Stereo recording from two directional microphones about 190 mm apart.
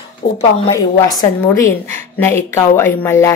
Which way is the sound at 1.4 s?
15° left (ahead or behind).